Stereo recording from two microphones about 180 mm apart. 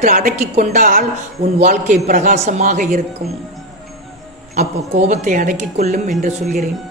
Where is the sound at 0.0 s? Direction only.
45° right (ahead or behind).